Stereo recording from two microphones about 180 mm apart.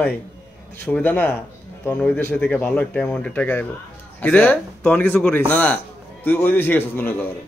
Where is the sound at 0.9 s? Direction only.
10° left (ahead or behind).